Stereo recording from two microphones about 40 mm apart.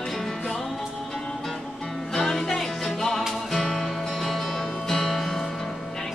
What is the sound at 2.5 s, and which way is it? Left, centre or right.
Music, centre.